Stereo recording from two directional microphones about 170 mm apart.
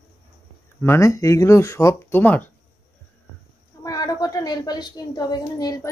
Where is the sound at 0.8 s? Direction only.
15° left (ahead or behind).